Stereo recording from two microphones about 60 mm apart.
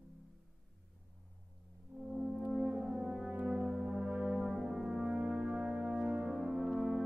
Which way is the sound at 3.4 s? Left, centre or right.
Centre.